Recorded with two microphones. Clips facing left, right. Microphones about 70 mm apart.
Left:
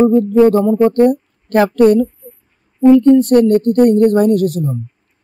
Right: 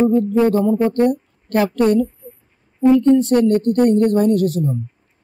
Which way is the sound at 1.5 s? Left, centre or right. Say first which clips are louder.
Left 5 dB; left.